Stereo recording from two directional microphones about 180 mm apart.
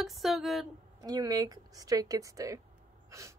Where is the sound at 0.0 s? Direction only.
Centre (ahead or behind).